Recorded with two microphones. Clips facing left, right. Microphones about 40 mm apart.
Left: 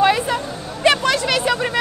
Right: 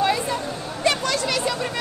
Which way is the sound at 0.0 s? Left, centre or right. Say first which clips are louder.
Left 5 dB; left.